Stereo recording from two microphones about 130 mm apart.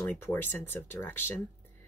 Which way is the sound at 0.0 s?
15° left (ahead or behind).